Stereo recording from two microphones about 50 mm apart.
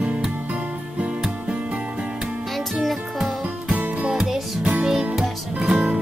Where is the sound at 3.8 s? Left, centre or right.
Right.